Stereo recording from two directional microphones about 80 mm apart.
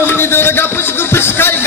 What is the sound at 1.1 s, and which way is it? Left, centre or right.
Music, left.